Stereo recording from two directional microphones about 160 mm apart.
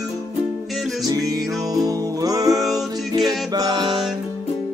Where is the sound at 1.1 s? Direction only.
20° right (ahead or behind).